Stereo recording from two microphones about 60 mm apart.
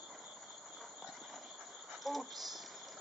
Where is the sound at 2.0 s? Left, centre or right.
Centre.